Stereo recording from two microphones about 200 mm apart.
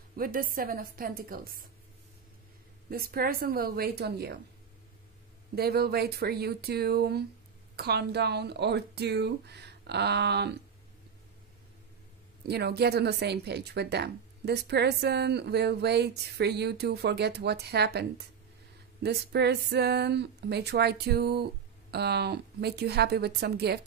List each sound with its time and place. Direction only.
0.1 s a woman's voice: 45° right (ahead or behind)
2.9 s speech: 50° right (ahead or behind)
5.6 s speech: 50° right (ahead or behind)
12.4 s speech: 55° right (ahead or behind)